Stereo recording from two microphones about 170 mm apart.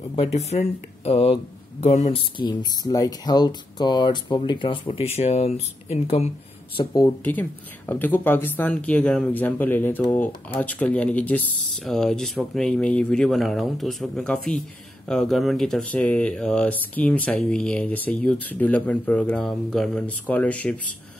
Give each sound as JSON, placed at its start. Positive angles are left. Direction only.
{"t": 0.1, "sound": "speech", "side_deg": 35}
{"t": 2.3, "sound": "speech", "side_deg": 25}
{"t": 6.8, "sound": "speech", "side_deg": 25}
{"t": 7.2, "sound": "speech", "side_deg": 10}